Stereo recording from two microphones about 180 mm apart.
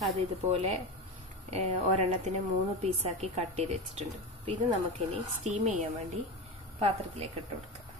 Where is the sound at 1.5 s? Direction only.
35° right (ahead or behind).